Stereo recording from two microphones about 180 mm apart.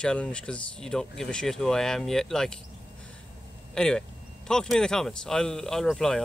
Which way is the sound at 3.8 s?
5° left (ahead or behind).